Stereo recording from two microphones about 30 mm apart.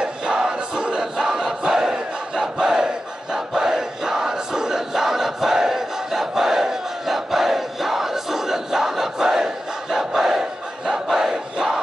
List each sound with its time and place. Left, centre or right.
0.0 s crowd: right
1.7 s battle cry: centre
3.3 s crowd: centre
10.9 s battle cry: centre
11.5 s crowd: right